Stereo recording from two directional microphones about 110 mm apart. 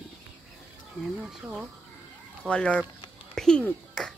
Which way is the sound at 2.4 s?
10° left (ahead or behind).